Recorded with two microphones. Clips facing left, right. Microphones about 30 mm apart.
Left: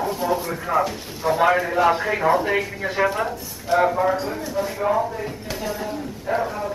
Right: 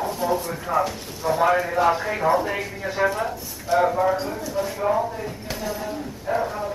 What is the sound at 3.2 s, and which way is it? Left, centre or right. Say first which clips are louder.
A man's voice: left 1 dB; centre.